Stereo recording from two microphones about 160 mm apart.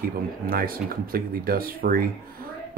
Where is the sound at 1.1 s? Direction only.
65° right (ahead or behind).